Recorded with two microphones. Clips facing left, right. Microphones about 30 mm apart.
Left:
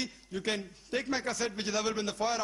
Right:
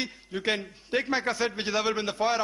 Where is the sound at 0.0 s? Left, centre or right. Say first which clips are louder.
Right 5 dB; right.